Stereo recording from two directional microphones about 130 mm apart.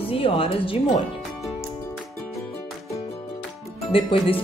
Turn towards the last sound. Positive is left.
turn(degrees=45)  # may be behind; listen again after turning